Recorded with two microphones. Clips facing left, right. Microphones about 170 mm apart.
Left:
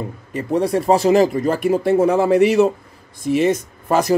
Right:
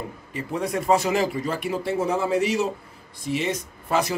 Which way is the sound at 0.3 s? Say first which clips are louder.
Left 9 dB; 40° left (ahead or behind).